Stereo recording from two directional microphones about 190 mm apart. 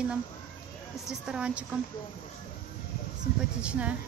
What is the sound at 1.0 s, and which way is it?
Speech, 5° right (ahead or behind).